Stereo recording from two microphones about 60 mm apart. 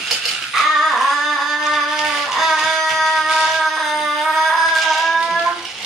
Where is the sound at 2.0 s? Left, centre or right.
Centre.